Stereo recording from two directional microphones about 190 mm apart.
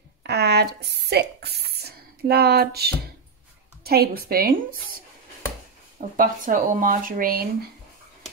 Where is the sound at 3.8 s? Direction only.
55° right (ahead or behind).